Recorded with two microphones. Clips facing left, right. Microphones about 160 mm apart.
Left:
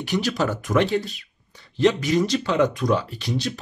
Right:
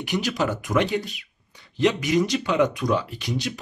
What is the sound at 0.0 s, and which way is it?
Speech, 15° right (ahead or behind).